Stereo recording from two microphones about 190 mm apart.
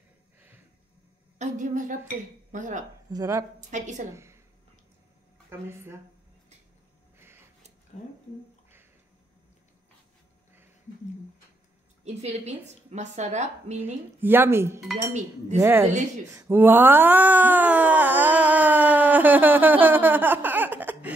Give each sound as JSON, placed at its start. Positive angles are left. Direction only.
{"t": 1.4, "sound": "a woman's voice", "side_deg": -40}
{"t": 3.1, "sound": "speech", "side_deg": -20}
{"t": 3.7, "sound": "a woman's voice", "side_deg": -40}
{"t": 4.1, "sound": "a sound", "side_deg": -15}
{"t": 5.5, "sound": "speech", "side_deg": -15}
{"t": 7.2, "sound": "a sound", "side_deg": -10}
{"t": 12.0, "sound": "a woman's voice", "side_deg": -35}
{"t": 14.2, "sound": "speech", "side_deg": -10}
{"t": 15.1, "sound": "a woman's voice", "side_deg": -40}
{"t": 15.6, "sound": "speech", "side_deg": -15}